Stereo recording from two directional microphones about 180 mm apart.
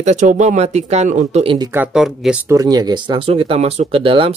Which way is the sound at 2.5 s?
20° right (ahead or behind).